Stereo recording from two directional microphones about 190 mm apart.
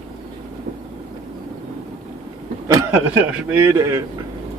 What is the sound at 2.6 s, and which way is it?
Speech, 15° right (ahead or behind).